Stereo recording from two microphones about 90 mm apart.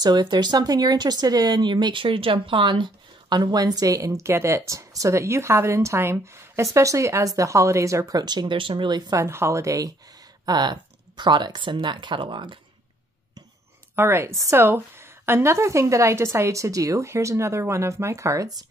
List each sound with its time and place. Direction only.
0.0 s speech: 50° right (ahead or behind)
9.1 s a woman's voice: 30° right (ahead or behind)
10.4 s speech: 50° right (ahead or behind)
13.9 s a woman's voice: 25° right (ahead or behind)